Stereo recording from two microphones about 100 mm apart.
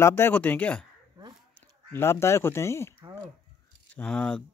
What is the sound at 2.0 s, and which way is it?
Speech, 25° left (ahead or behind).